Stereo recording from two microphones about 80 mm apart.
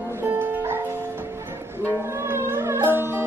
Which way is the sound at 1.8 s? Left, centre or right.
Right.